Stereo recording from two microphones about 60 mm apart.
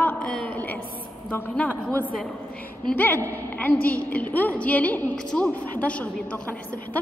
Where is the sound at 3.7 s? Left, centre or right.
Left.